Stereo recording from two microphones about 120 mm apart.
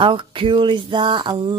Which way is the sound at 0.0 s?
45° right (ahead or behind).